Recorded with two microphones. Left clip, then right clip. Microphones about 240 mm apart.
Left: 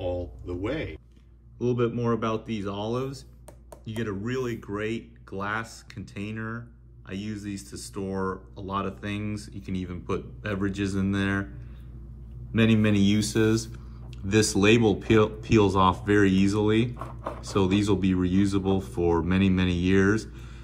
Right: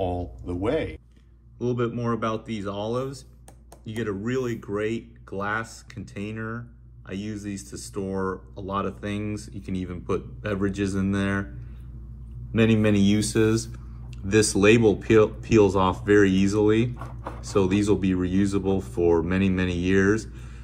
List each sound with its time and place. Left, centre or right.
0.0 s a sound: centre
1.6 s speech: centre
12.5 s speech: left